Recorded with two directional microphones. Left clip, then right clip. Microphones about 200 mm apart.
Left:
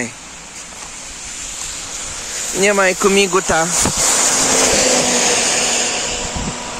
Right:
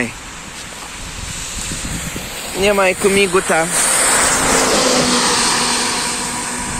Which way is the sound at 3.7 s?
60° left (ahead or behind).